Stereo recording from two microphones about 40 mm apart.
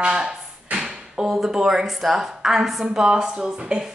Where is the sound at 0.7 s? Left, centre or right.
Centre.